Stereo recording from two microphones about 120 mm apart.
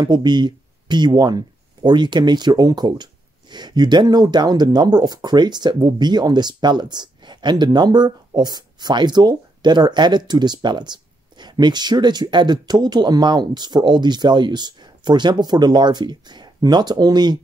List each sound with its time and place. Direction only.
0.0 s speech: 35° right (ahead or behind)